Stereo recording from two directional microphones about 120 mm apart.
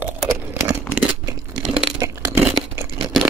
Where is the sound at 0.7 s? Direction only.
25° right (ahead or behind).